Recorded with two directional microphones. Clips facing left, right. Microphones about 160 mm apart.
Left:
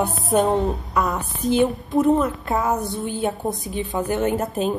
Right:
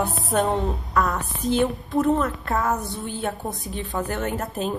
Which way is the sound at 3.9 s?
20° left (ahead or behind).